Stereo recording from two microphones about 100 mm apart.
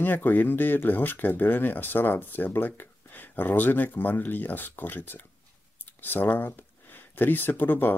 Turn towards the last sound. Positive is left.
turn(degrees=20)  # may be behind; listen again after turning